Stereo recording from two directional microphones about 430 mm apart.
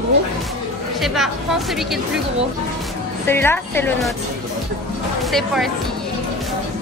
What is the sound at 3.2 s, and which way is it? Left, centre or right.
Speech, centre.